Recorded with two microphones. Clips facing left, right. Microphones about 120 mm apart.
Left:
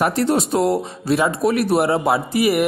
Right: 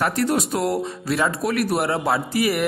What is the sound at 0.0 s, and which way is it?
Speech, 25° left (ahead or behind).